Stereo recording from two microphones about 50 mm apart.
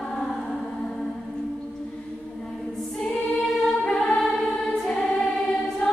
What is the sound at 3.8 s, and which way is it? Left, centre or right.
Choir, centre.